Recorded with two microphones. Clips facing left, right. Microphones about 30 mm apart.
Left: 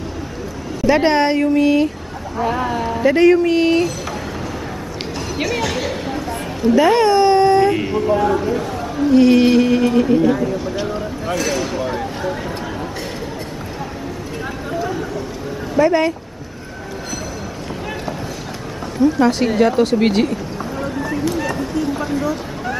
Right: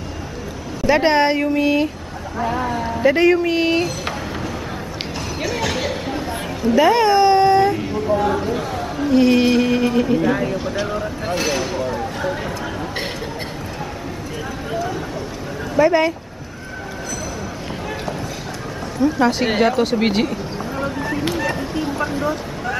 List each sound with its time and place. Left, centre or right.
0.8 s a man's voice: centre
2.4 s speech: centre
3.0 s speech: centre
5.4 s speech: centre
7.8 s speech: left
8.2 s a man's voice: centre
15.7 s speech: centre
19.0 s a man's voice: centre
19.8 s a sound: centre
21.5 s a sound: centre